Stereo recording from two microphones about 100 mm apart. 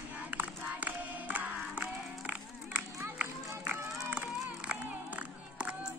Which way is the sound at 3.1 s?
20° right (ahead or behind).